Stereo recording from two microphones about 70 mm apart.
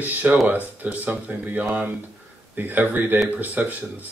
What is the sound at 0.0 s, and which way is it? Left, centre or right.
Speech, right.